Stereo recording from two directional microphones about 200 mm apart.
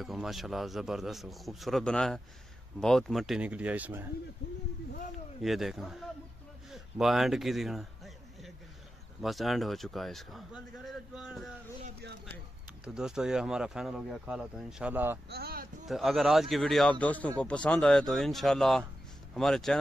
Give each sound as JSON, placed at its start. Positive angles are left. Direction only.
{"t": 0.0, "sound": "speech", "side_deg": 0}
{"t": 5.4, "sound": "speech", "side_deg": 0}
{"t": 6.7, "sound": "a sound", "side_deg": 0}
{"t": 9.2, "sound": "speech", "side_deg": 0}
{"t": 12.8, "sound": "speech", "side_deg": -5}
{"t": 15.2, "sound": "speech", "side_deg": -50}
{"t": 15.9, "sound": "speech", "side_deg": 0}